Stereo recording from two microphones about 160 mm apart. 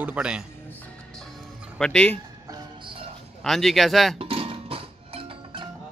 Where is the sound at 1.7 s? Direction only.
5° left (ahead or behind).